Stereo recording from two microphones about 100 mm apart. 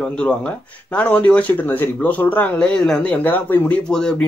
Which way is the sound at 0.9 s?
15° left (ahead or behind).